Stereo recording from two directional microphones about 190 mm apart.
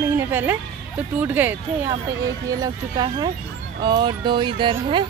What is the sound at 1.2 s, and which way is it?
Speech, 10° right (ahead or behind).